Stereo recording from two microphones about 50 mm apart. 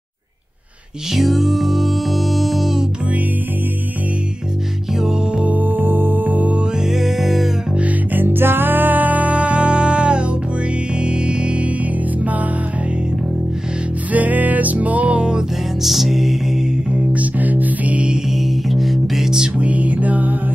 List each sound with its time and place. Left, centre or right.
1.1 s music: centre
5.4 s music: right
6.9 s music: centre
8.1 s music: right
14.1 s music: right
15.8 s music: centre
17.1 s music: right
18.3 s music: centre
19.4 s music: right